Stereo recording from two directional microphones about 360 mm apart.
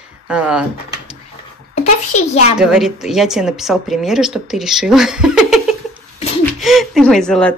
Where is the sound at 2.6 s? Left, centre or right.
Centre.